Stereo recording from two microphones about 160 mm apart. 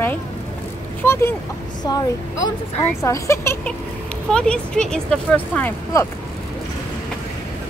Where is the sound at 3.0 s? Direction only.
20° left (ahead or behind).